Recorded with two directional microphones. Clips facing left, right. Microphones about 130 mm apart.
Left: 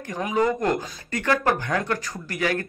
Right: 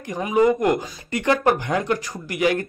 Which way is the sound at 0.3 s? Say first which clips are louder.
Right 5 dB; 15° right (ahead or behind).